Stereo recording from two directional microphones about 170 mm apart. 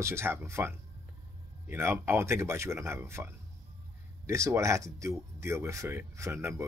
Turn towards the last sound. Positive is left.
turn(degrees=-15)  # may be behind; listen again after turning